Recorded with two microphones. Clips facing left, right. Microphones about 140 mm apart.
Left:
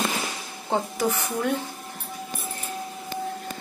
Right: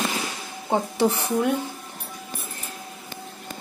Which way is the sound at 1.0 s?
30° right (ahead or behind).